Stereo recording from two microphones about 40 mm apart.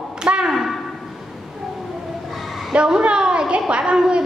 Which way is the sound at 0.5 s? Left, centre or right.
Centre.